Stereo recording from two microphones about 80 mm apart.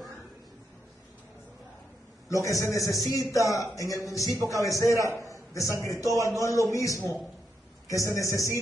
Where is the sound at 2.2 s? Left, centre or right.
Left.